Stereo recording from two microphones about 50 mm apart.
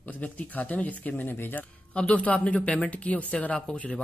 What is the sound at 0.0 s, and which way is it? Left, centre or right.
Speech, left.